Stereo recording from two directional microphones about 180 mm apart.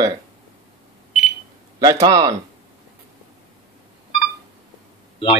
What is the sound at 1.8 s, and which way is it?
Speech, 20° right (ahead or behind).